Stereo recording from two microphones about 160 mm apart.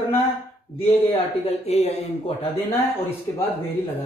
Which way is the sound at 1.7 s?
40° left (ahead or behind).